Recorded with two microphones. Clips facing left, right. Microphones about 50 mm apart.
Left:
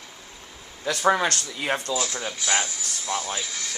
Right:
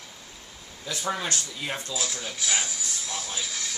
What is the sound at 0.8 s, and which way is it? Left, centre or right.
Speech, left.